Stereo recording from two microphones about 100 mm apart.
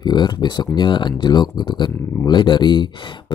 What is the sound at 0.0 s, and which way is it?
Speech, 45° left (ahead or behind).